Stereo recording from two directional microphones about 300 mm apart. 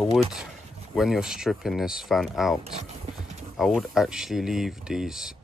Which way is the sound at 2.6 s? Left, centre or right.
Right.